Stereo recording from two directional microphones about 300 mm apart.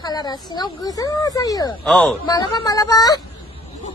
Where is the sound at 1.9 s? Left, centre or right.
Centre.